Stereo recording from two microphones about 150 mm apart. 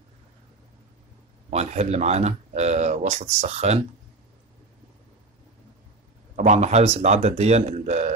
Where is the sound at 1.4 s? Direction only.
45° right (ahead or behind).